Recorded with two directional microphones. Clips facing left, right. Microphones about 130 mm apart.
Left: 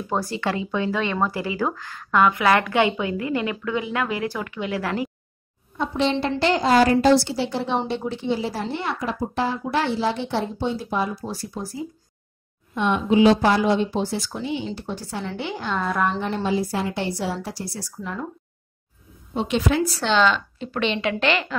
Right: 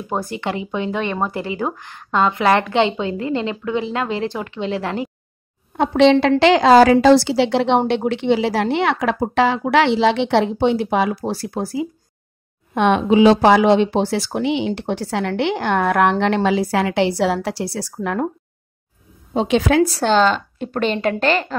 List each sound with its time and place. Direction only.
0.3 s speech: 20° right (ahead or behind)
5.7 s a woman's voice: 80° right
12.7 s speech: 90° right; by 18.3 s 60° right (ahead or behind)
19.3 s a woman's voice: 90° right
20.0 s a woman's voice: 45° right (ahead or behind)